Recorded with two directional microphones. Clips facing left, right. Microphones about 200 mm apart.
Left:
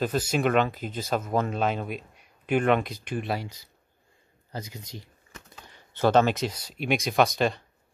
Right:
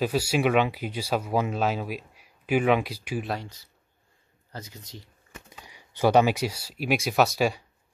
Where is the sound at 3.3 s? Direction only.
10° left (ahead or behind).